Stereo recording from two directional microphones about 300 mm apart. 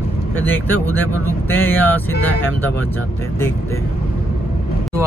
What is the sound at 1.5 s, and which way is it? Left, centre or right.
Speech, centre.